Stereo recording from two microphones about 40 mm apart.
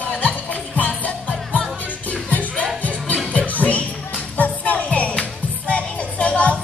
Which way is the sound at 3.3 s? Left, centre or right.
Left.